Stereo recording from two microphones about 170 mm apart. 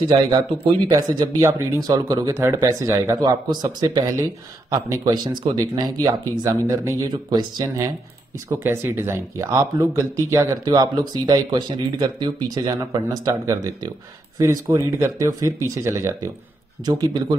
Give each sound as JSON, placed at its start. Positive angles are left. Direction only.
{"t": 0.8, "sound": "speech", "side_deg": -25}
{"t": 8.5, "sound": "speech", "side_deg": -15}